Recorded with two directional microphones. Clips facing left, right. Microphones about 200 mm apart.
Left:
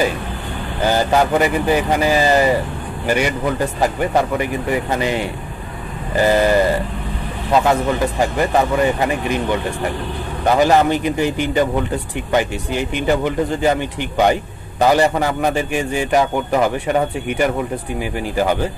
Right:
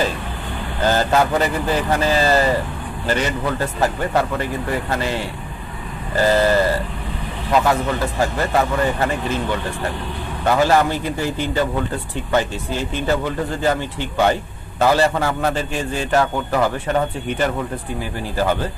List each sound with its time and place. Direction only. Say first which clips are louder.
0.8 s a man's voice: left 1 dB; 15° left (ahead or behind)